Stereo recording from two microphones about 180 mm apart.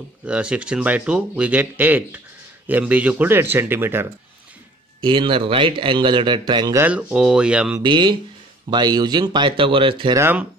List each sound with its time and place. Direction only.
0.2 s speech: 5° right (ahead or behind)
5.0 s speech: 30° right (ahead or behind)
6.8 s speech: 5° right (ahead or behind)
7.8 s speech: 25° right (ahead or behind)
10.1 s speech: 10° right (ahead or behind)